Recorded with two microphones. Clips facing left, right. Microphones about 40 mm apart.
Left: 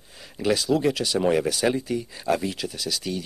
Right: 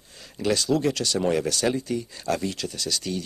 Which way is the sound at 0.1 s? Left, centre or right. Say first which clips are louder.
Left 1 dB; centre.